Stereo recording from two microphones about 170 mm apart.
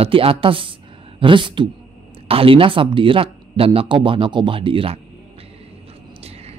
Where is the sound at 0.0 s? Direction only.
35° right (ahead or behind).